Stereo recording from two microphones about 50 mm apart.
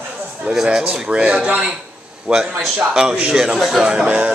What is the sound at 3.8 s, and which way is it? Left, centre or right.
Speech, centre.